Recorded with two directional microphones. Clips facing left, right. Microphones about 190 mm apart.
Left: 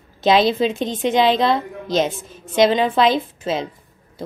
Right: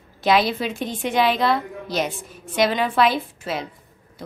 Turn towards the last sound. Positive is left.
turn(degrees=20)  # may be behind; listen again after turning